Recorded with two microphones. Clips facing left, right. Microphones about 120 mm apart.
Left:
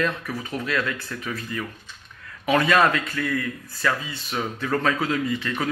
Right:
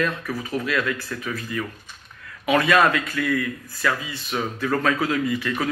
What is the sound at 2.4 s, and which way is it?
Speech, 25° left (ahead or behind).